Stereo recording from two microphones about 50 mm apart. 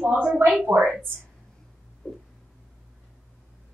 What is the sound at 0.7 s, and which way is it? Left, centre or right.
Speech, right.